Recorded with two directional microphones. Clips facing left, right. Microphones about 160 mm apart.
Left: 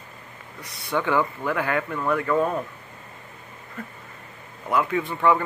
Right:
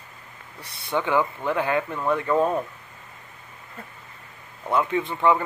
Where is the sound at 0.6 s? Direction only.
30° right (ahead or behind).